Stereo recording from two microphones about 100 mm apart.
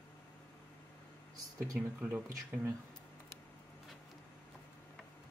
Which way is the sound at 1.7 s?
10° right (ahead or behind).